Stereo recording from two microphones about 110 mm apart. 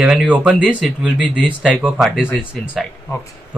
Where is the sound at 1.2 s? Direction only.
10° left (ahead or behind).